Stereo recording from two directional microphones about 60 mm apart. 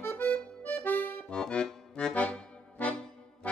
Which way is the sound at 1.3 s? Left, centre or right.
Centre.